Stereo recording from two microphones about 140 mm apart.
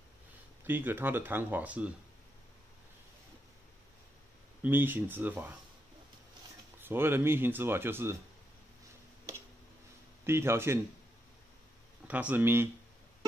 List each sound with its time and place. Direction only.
0.7 s speech: 15° right (ahead or behind)
4.6 s speech: 15° right (ahead or behind)
6.8 s speech: 15° right (ahead or behind)
10.2 s speech: 20° right (ahead or behind)
12.1 s speech: 10° right (ahead or behind)